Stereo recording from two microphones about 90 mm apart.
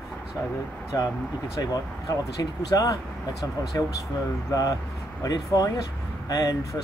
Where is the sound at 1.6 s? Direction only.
40° left (ahead or behind).